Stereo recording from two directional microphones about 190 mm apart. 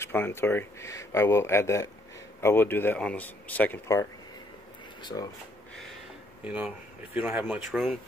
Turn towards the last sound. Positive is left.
turn(degrees=-5)  # may be behind; listen again after turning